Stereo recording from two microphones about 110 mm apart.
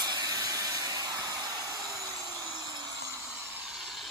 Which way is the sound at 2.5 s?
40° right (ahead or behind).